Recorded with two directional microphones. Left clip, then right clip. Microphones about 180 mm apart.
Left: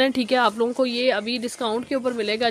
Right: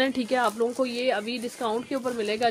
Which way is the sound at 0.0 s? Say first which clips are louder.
Left 5 dB; 40° left (ahead or behind).